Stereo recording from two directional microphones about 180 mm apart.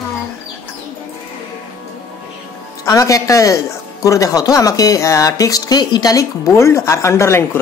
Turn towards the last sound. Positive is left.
turn(degrees=15)  # may be behind; listen again after turning